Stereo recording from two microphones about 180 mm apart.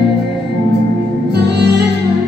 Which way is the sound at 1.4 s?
65° right (ahead or behind).